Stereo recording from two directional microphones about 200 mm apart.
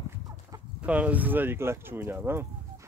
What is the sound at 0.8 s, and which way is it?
Speech, 5° right (ahead or behind).